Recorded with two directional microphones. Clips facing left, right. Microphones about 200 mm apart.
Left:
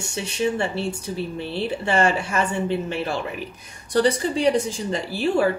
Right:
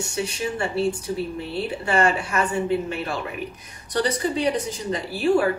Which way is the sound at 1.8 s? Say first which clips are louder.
Even; 25° left (ahead or behind).